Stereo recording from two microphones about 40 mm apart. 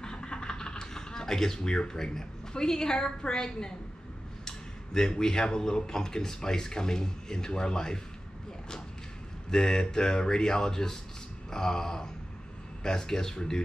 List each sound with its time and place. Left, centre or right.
0.0 s a sound: left
4.5 s speech: centre
9.5 s speech: centre